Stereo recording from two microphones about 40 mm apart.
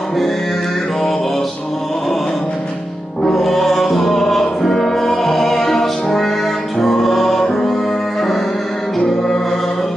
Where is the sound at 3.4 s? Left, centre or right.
Centre.